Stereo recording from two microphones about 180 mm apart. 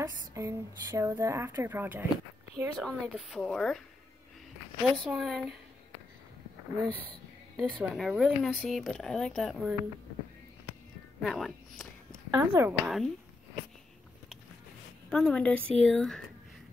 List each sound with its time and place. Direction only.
0.0 s speech: 15° right (ahead or behind)
2.8 s a woman's voice: centre (ahead or behind)
4.9 s a woman's voice: 5° right (ahead or behind)
6.9 s a woman's voice: 10° left (ahead or behind)
11.2 s a woman's voice: centre (ahead or behind)
12.1 s speech: 15° right (ahead or behind)
15.0 s a woman's voice: 5° left (ahead or behind)